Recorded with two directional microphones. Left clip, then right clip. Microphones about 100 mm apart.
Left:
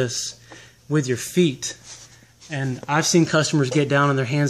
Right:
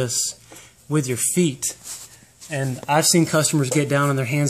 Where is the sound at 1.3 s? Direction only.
20° right (ahead or behind).